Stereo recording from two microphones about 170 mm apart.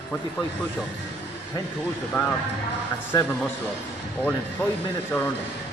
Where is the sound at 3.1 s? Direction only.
20° left (ahead or behind).